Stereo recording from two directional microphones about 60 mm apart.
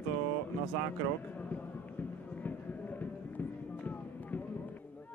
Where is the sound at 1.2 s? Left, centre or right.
Left.